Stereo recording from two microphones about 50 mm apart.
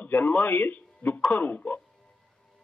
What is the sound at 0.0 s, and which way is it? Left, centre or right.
A man's voice, left.